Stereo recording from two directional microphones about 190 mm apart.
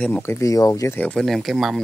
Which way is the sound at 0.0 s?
10° left (ahead or behind).